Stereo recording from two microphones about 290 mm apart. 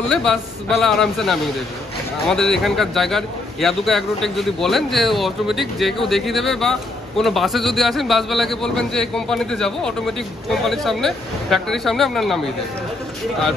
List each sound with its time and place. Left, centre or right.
0.1 s a man's voice: centre